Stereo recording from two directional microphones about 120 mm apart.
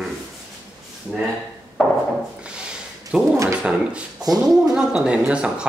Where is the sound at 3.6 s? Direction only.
5° right (ahead or behind).